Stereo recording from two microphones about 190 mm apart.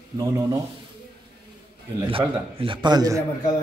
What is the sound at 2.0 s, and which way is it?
A man's voice, 30° right (ahead or behind).